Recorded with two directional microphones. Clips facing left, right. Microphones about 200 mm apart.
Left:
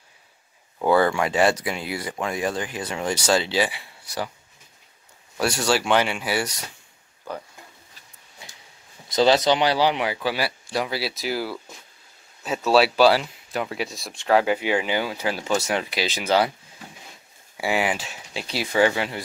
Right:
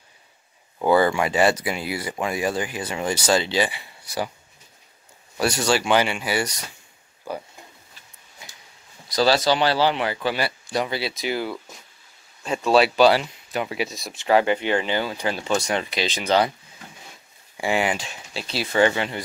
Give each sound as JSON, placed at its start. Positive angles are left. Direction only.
{"t": 0.7, "sound": "speech", "side_deg": -5}
{"t": 5.4, "sound": "speech", "side_deg": 0}
{"t": 7.3, "sound": "speech", "side_deg": -10}
{"t": 8.4, "sound": "a sound", "side_deg": 30}
{"t": 9.1, "sound": "speech", "side_deg": 20}
{"t": 17.6, "sound": "speech", "side_deg": 5}